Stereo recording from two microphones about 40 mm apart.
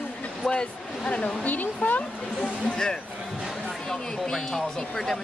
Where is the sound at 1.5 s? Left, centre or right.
Left.